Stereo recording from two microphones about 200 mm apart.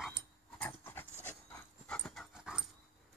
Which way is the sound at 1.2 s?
5° left (ahead or behind).